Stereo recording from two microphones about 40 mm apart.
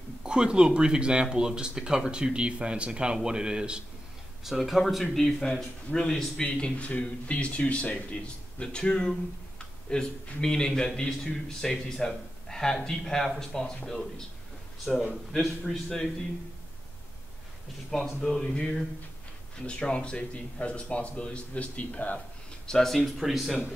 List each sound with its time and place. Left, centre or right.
0.2 s speech: right
4.5 s a man's voice: centre
6.6 s speech: left
8.7 s a man's voice: left
14.9 s speech: centre
15.4 s a man's voice: centre
18.2 s a man's voice: centre; by 22.2 s left
22.7 s speech: centre